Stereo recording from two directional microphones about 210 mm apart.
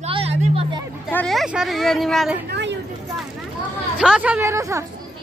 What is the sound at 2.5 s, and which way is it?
Speech, 60° right (ahead or behind).